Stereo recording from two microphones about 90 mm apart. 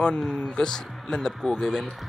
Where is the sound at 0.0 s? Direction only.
10° left (ahead or behind).